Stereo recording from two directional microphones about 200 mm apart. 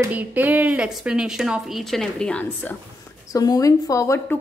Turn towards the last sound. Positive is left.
turn(degrees=15)  # may be behind; listen again after turning